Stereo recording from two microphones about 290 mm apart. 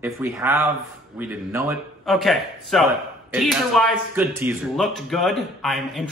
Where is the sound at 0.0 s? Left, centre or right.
Centre.